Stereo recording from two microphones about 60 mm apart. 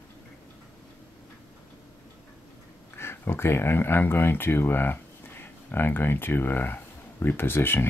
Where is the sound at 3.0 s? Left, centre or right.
Left.